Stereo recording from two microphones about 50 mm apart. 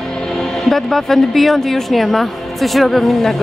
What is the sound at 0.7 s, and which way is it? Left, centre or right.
Speech, centre.